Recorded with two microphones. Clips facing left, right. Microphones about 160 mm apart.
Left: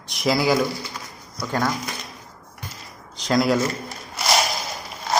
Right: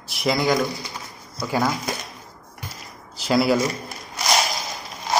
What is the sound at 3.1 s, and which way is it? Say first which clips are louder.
Speech: right 1 dB; 5° right (ahead or behind).